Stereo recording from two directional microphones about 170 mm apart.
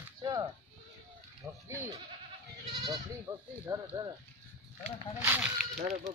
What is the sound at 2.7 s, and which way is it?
Speech, 25° right (ahead or behind).